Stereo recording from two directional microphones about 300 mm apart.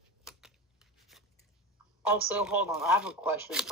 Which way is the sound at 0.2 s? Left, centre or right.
Centre.